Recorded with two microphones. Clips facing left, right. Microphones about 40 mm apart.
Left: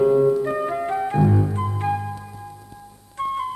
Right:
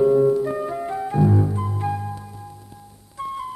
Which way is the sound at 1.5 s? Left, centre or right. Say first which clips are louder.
Left 2 dB; left.